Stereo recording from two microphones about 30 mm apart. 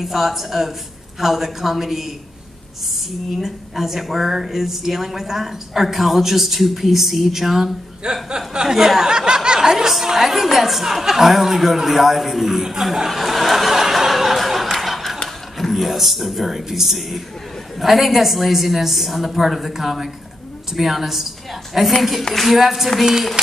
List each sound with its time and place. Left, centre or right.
0.0 s speech: centre
3.3 s speech: centre
8.0 s speech: right
8.6 s speech: centre
13.2 s chuckle: centre
15.5 s a woman's voice: centre
22.3 s a woman's voice: centre